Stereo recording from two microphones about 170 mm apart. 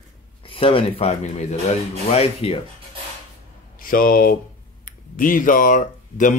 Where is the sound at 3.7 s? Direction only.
55° left (ahead or behind).